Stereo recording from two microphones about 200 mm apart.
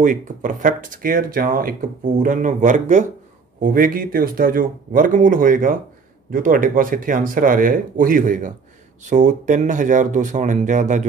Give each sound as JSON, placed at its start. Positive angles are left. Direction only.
{"t": 0.0, "sound": "speech", "side_deg": -40}